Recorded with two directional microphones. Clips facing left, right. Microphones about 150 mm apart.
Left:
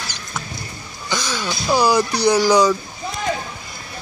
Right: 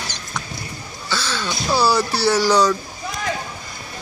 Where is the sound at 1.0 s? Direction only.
15° left (ahead or behind).